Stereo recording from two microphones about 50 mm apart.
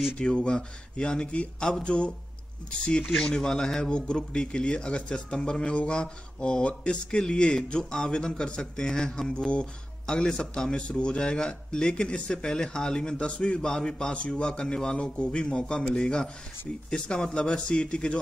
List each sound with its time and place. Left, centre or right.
0.2 s speech: centre